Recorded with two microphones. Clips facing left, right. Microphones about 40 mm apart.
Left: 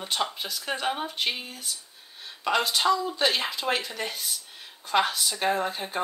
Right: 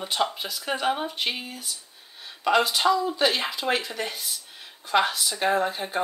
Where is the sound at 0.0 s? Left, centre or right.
Centre.